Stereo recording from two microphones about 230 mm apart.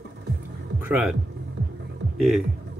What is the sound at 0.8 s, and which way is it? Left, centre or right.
Speech, centre.